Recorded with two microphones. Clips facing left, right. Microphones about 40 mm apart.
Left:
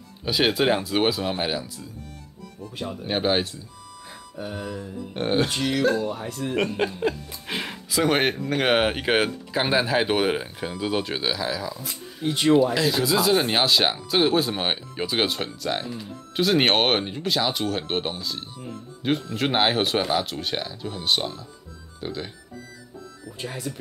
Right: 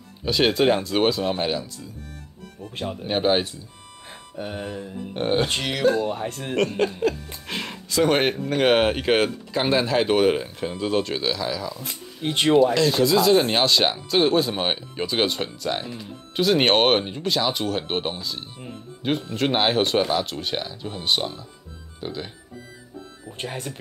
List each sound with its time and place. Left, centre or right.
0.2 s speech: centre
3.1 s speech: centre
4.1 s music: right
5.1 s speech: centre
6.0 s speech: right
6.8 s music: centre
7.4 s music: centre
8.5 s speech: centre
11.8 s speech: right
12.7 s speech: centre
23.2 s speech: right